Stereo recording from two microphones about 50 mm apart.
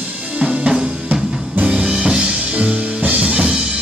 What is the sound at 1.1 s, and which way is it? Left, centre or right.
Music, right.